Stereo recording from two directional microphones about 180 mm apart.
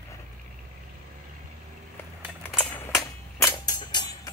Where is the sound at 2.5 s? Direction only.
10° left (ahead or behind).